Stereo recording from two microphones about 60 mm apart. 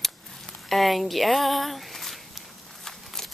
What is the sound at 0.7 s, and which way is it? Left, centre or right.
Speech, centre.